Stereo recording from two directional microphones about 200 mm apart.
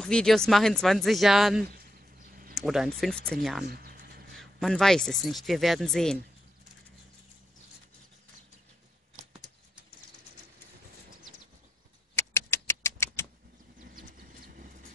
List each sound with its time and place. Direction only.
0.0 s speech: 5° left (ahead or behind)
3.6 s speech: 50° right (ahead or behind)
4.4 s speech: centre (ahead or behind)
12.2 s rodents: 15° left (ahead or behind)
13.0 s vehicle: 15° left (ahead or behind)
13.9 s vehicle: 45° right (ahead or behind)